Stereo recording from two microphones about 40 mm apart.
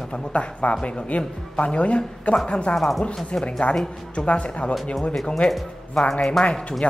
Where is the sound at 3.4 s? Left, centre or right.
Left.